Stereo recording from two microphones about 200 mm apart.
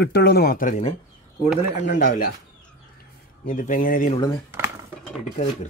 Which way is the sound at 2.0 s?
45° left (ahead or behind).